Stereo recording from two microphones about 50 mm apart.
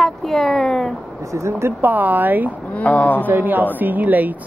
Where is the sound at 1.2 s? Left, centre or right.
Right.